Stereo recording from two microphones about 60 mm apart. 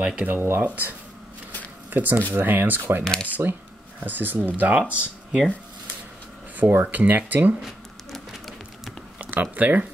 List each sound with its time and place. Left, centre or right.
0.0 s speech: centre
0.3 s speech: right
0.6 s speech: right
3.0 s speech: centre
3.3 s speech: right
6.5 s speech: right
8.1 s a sound: centre
9.2 s speech: right